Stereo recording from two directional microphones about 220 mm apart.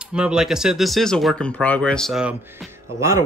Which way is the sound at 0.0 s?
5° right (ahead or behind).